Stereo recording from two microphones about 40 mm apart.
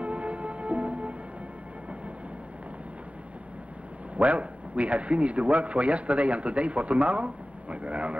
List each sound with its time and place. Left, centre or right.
0.0 s music: right
4.2 s a man's voice: right